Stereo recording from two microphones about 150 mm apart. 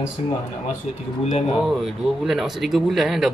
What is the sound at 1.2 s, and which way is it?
Speech, 45° left (ahead or behind).